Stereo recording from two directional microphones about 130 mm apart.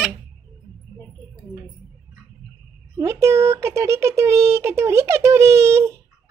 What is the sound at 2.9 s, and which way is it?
Speech, 20° right (ahead or behind).